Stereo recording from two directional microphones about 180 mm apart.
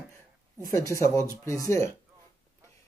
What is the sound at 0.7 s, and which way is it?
Speech, 15° left (ahead or behind).